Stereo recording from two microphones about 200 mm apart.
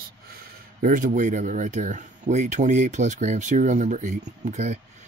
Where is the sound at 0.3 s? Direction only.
45° right (ahead or behind).